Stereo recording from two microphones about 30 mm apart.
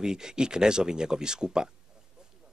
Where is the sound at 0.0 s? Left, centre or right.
Right.